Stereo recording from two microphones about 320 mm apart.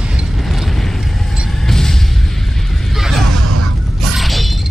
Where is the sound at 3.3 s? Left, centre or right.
Right.